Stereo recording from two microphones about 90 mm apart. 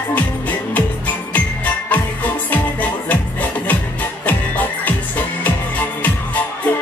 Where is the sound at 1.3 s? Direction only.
20° left (ahead or behind).